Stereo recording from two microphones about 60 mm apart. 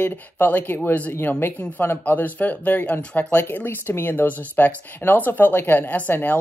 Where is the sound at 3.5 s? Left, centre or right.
Left.